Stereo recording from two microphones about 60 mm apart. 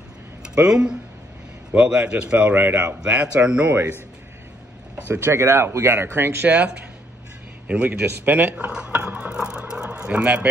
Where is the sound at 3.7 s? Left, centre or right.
Right.